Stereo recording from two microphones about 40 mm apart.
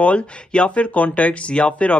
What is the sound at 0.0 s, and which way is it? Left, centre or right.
Speech, left.